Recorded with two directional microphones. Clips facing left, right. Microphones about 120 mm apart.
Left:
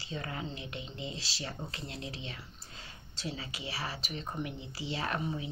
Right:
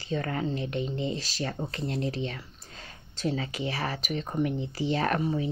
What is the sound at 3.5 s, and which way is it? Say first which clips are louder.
Speech: right 8 dB; 50° right (ahead or behind).